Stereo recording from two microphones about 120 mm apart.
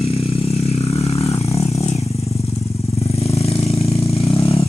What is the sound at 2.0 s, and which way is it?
Vehicle, 60° left (ahead or behind).